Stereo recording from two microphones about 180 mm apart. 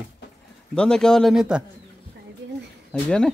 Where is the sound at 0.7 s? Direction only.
5° left (ahead or behind).